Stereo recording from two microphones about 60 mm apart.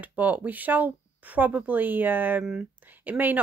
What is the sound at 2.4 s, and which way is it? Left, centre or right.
Speech, centre.